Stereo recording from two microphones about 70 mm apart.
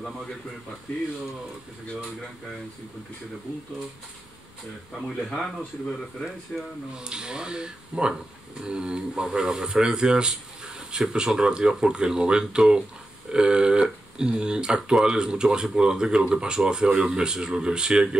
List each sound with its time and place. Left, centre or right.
4.9 s speech: centre
7.0 s speech: centre